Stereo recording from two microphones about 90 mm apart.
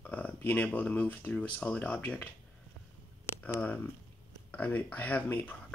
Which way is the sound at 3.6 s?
20° left (ahead or behind).